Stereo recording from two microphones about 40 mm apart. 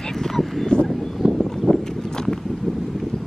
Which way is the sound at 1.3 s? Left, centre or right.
Centre.